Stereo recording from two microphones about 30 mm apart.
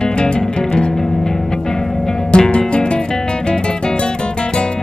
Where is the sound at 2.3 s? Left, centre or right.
Left.